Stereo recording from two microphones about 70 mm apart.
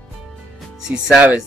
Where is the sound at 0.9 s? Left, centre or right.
Centre.